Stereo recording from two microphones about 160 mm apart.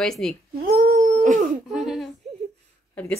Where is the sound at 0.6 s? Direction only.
65° right (ahead or behind).